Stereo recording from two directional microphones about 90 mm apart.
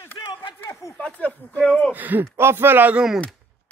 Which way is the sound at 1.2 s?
15° left (ahead or behind).